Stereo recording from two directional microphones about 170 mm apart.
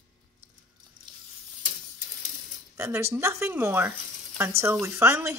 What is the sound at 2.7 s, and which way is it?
Speech, 15° right (ahead or behind).